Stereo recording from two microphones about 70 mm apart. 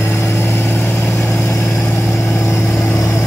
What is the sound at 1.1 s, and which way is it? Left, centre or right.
Vehicle, left.